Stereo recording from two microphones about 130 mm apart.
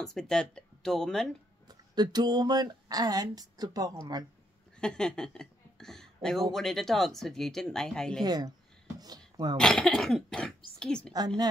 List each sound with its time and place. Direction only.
0.0 s speech: 5° left (ahead or behind)
1.7 s speech: 30° right (ahead or behind)
4.7 s speech: 5° left (ahead or behind)
8.2 s speech: 30° right (ahead or behind)
9.6 s a woman's voice: 5° left (ahead or behind)
11.1 s speech: 30° right (ahead or behind)